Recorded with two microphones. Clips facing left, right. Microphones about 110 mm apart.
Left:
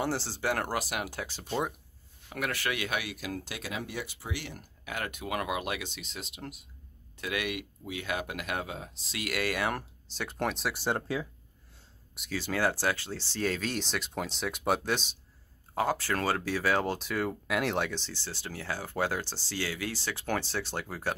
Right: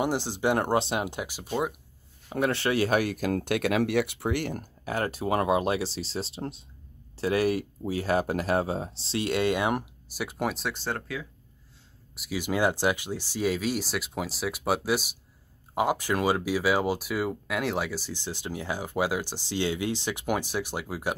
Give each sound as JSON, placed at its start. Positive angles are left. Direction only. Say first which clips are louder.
{"t": 0.0, "sound": "speech", "louder": "right 5 dB", "side_deg": -15}
{"t": 2.2, "sound": "speech", "louder": "right 7 dB", "side_deg": -30}
{"t": 10.7, "sound": "speech", "louder": "left 1 dB", "side_deg": 15}
{"t": 12.2, "sound": "speech", "louder": "right 4 dB", "side_deg": -15}